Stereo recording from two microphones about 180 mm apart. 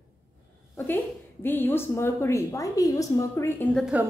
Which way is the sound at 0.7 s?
10° left (ahead or behind).